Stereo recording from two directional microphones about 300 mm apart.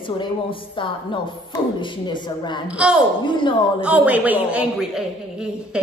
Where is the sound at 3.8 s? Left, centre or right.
Centre.